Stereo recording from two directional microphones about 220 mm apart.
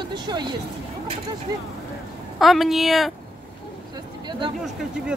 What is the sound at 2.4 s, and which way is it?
Speech, centre (ahead or behind).